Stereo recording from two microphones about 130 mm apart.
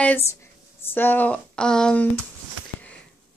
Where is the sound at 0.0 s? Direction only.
15° left (ahead or behind).